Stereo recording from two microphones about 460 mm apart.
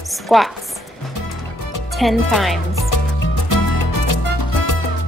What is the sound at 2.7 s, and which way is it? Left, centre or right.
Music, left.